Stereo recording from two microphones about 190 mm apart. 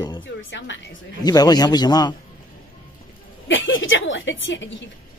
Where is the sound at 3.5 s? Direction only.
90° left.